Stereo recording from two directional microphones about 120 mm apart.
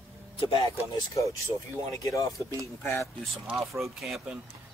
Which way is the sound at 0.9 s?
25° left (ahead or behind).